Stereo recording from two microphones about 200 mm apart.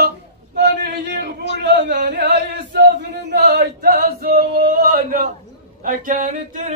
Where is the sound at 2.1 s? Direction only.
55° right (ahead or behind).